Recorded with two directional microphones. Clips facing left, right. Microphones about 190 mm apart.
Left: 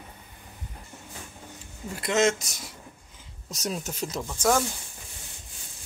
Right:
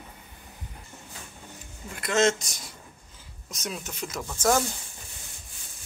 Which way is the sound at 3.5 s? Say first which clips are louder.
Left 4 dB; 40° left (ahead or behind).